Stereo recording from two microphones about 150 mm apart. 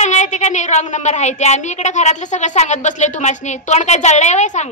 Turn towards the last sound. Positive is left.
turn(degrees=50)  # may be behind; listen again after turning